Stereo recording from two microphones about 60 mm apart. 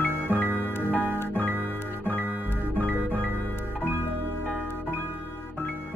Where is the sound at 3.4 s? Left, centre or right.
Left.